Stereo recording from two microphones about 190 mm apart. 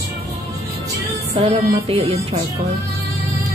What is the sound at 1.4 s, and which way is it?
Music, 30° right (ahead or behind).